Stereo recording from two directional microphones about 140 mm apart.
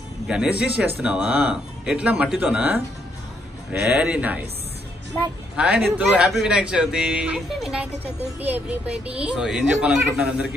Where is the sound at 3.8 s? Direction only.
5° right (ahead or behind).